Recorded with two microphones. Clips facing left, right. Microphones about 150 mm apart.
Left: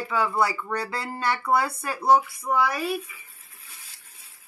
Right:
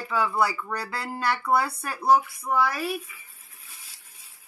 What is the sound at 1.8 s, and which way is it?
Speech, 15° left (ahead or behind).